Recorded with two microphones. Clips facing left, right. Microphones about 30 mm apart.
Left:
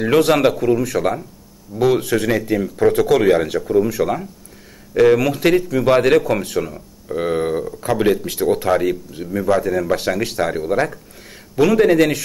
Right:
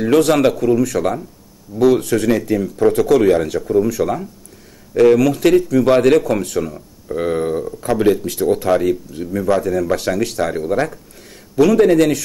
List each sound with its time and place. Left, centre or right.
0.0 s speech: centre